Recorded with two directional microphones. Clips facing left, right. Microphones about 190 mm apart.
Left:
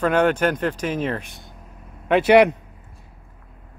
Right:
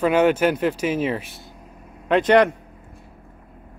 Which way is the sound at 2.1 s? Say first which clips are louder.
Left 2 dB; 5° left (ahead or behind).